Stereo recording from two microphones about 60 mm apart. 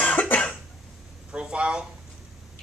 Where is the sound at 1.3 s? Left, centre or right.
Centre.